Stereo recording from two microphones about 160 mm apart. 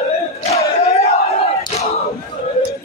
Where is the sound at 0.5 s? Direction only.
40° left (ahead or behind).